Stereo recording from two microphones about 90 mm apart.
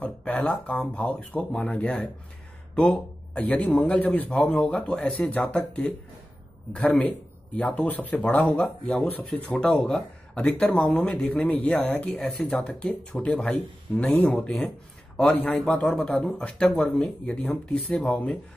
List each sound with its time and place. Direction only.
0.0 s a man's voice: 15° left (ahead or behind)
8.6 s a man's voice: centre (ahead or behind)
12.3 s a man's voice: centre (ahead or behind)